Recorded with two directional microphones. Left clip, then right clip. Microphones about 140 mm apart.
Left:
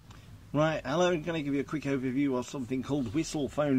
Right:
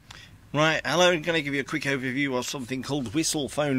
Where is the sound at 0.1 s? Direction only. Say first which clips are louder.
Right 3 dB; 25° right (ahead or behind).